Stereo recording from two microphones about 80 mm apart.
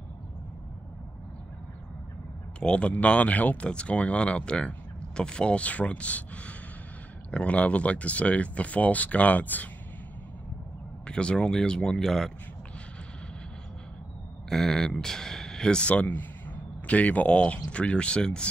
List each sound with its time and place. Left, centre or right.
2.6 s speech: centre
11.1 s speech: centre
14.5 s speech: centre